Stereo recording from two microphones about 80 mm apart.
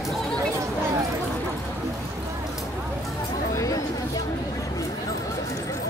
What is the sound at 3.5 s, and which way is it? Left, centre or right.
Chatter, left.